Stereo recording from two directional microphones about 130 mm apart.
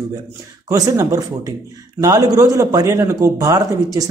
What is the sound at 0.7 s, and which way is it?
A man's voice, 25° right (ahead or behind).